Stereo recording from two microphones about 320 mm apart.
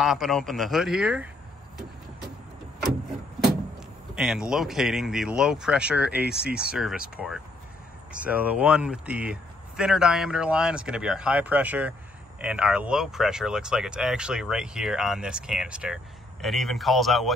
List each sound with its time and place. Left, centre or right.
0.0 s speech: centre
4.1 s speech: centre